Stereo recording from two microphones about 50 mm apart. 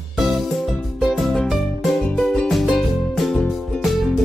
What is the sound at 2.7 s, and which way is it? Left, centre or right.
Music, centre.